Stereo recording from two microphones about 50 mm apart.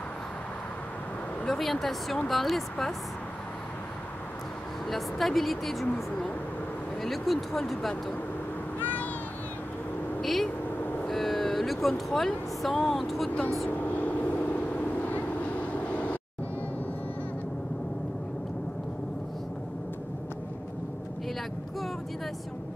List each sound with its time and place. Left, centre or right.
1.5 s speech: centre
4.8 s speech: centre
8.7 s a sound: left
10.2 s vehicle: centre
10.8 s vehicle: left
11.1 s speech: centre
13.7 s vehicle: left